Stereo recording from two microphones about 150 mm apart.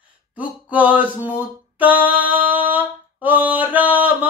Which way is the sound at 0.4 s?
10° right (ahead or behind).